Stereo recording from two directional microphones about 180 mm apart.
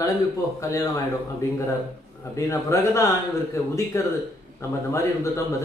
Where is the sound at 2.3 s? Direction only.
15° left (ahead or behind).